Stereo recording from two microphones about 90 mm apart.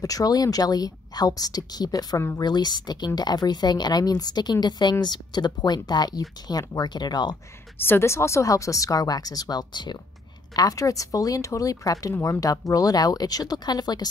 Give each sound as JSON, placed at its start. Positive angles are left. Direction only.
{"t": 0.0, "sound": "speech", "side_deg": 40}
{"t": 7.8, "sound": "speech", "side_deg": 25}
{"t": 10.5, "sound": "speech", "side_deg": 40}